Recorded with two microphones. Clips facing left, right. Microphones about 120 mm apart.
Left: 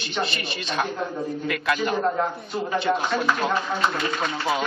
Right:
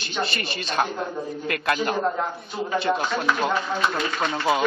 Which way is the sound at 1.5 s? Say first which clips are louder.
Right 1 dB; 50° right (ahead or behind).